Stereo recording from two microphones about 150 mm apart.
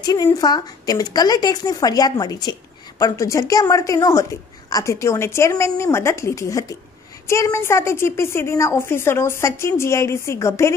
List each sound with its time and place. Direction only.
0.0 s a woman's voice: 25° left (ahead or behind)